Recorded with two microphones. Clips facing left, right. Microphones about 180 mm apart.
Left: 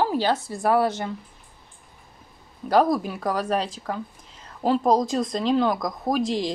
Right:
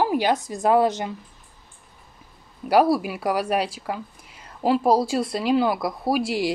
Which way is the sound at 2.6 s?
10° right (ahead or behind).